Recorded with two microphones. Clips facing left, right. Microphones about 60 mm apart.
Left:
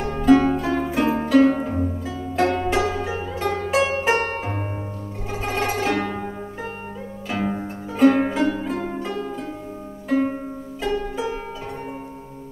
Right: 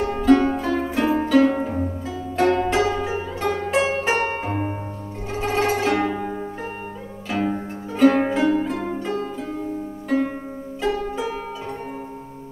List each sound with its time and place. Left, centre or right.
0.2 s music: centre
1.6 s zither: centre
7.2 s music: centre
10.8 s harp: centre